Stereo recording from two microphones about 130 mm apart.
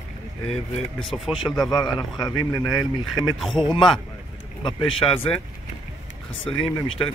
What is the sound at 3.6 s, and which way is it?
A man's voice, 40° left (ahead or behind).